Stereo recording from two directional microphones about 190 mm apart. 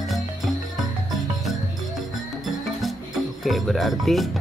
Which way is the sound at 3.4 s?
Centre (ahead or behind).